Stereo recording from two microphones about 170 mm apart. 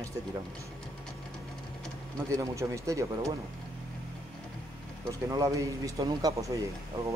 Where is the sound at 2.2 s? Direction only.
20° right (ahead or behind).